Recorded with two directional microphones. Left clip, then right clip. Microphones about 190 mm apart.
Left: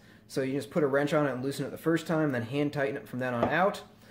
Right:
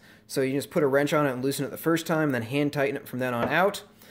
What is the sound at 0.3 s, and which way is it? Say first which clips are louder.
Speech: right 5 dB; 35° right (ahead or behind).